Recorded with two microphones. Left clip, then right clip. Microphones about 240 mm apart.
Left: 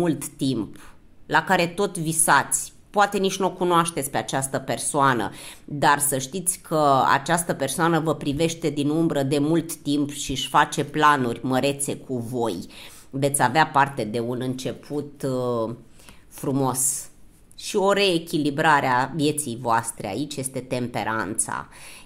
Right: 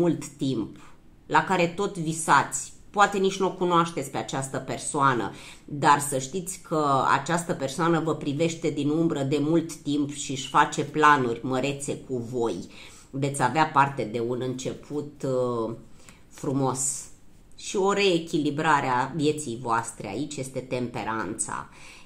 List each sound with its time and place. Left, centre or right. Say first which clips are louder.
0.0 s speech: left 1 dB; left